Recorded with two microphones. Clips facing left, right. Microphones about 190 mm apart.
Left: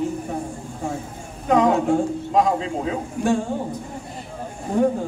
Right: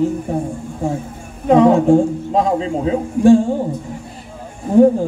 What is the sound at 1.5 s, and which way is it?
A man's voice, 30° right (ahead or behind).